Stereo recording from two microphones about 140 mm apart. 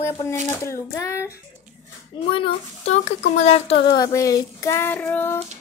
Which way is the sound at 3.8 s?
25° left (ahead or behind).